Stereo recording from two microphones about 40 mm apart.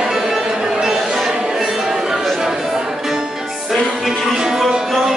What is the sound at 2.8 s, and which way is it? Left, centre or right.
Music, centre.